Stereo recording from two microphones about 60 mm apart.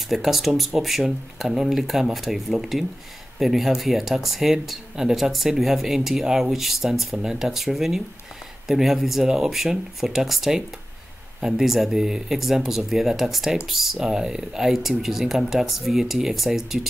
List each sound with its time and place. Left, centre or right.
0.1 s speech: centre